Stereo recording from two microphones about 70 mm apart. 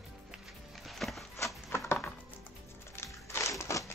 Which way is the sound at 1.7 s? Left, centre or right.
Left.